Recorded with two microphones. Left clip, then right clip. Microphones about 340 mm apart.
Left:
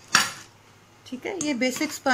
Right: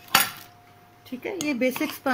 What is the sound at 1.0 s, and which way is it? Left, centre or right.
Speech, centre.